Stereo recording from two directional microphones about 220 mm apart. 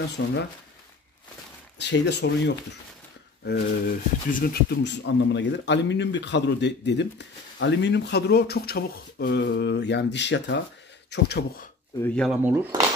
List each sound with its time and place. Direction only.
0.2 s speech: 55° left (ahead or behind)
1.8 s speech: 50° left (ahead or behind)
4.8 s speech: 55° left (ahead or behind)
12.0 s speech: 5° left (ahead or behind)
12.4 s speech: 10° right (ahead or behind)